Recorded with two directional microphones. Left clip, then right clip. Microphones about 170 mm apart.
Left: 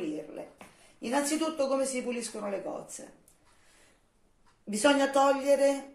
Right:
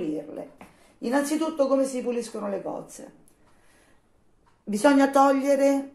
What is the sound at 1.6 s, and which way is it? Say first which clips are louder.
Speech: right 8 dB; 20° right (ahead or behind).